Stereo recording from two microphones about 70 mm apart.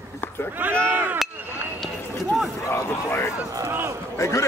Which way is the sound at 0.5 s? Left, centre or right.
Right.